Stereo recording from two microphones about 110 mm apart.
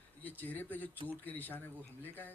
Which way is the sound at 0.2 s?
15° left (ahead or behind).